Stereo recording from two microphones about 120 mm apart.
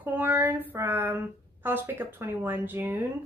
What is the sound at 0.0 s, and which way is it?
Speech, 15° right (ahead or behind).